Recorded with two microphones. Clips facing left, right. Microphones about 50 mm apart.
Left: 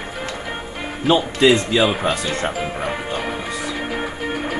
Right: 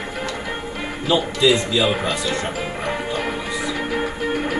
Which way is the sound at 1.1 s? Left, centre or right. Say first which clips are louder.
Left 3 dB; left.